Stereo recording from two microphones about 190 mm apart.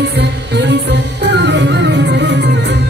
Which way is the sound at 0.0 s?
65° right (ahead or behind).